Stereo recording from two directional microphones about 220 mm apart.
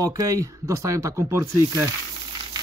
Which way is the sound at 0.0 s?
15° right (ahead or behind).